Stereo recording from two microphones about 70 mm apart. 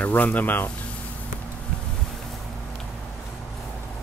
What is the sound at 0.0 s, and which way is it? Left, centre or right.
Speech, left.